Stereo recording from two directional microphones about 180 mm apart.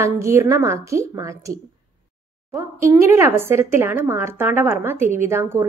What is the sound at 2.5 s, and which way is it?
A woman's voice, 15° right (ahead or behind).